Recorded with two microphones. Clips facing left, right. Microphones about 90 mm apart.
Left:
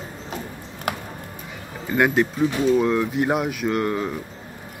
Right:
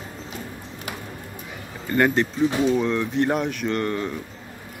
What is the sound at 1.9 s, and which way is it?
Speech, 5° left (ahead or behind).